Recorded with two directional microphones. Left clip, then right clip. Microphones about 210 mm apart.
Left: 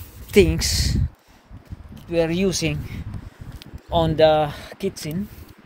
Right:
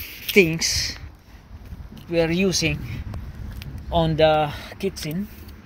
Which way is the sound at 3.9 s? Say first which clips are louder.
Left 2 dB; 20° left (ahead or behind).